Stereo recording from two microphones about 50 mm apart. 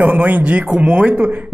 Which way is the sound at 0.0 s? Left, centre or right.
Right.